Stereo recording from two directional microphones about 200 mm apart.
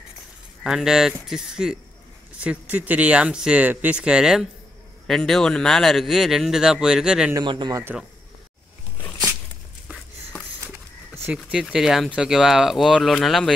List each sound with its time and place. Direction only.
0.7 s a man's voice: 5° right (ahead or behind)
7.3 s speech: 20° right (ahead or behind)
11.2 s a man's voice: 5° right (ahead or behind)